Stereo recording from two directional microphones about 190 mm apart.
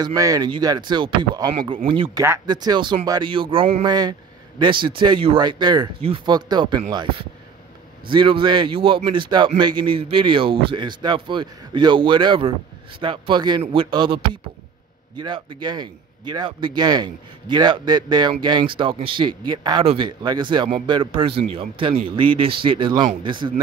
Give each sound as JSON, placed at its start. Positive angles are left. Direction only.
{"t": 0.0, "sound": "speech", "side_deg": -20}